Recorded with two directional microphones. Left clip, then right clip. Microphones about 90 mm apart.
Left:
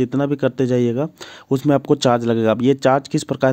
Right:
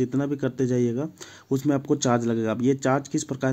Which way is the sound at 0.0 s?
50° left (ahead or behind).